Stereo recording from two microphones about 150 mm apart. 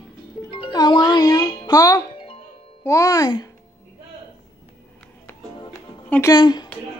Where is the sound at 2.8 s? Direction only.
20° left (ahead or behind).